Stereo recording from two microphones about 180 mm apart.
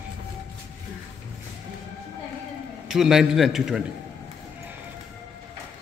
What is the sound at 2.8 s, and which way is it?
A man's voice, centre (ahead or behind).